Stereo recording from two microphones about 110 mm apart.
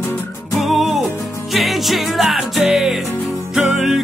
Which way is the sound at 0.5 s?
Centre (ahead or behind).